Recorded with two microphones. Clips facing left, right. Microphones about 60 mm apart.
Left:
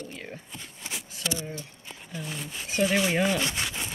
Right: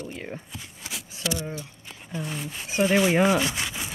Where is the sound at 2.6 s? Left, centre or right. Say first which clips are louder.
Right 4 dB; right.